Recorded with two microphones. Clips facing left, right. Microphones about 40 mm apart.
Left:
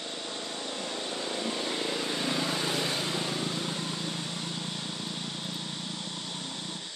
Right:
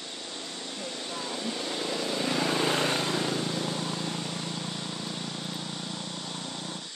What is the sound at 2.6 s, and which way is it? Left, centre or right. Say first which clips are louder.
Vehicle: right 4 dB; right.